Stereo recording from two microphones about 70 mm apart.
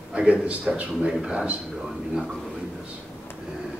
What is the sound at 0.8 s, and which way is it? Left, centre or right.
A man's voice, centre.